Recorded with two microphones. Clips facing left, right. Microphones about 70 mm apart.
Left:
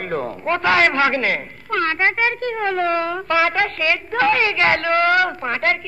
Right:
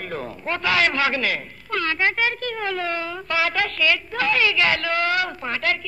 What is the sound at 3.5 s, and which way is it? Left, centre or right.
A woman's voice, left.